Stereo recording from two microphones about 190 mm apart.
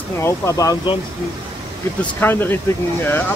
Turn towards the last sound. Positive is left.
turn(degrees=10)  # may be behind; listen again after turning